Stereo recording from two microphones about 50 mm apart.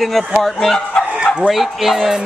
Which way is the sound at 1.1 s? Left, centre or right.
Right.